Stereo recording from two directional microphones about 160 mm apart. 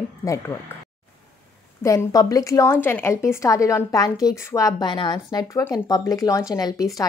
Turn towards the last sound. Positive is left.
turn(degrees=20)  # may be behind; listen again after turning